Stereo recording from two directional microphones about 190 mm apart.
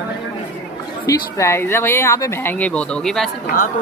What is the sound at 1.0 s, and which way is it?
Speech, 15° left (ahead or behind).